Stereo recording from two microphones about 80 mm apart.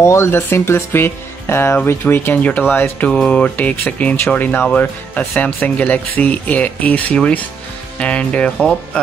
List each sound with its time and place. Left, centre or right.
0.0 s speech: left; by 9.0 s centre